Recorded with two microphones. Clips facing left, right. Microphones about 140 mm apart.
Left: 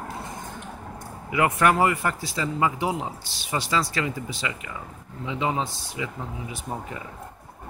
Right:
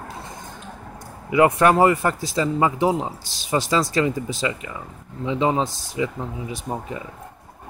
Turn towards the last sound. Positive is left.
turn(degrees=-20)  # may be behind; listen again after turning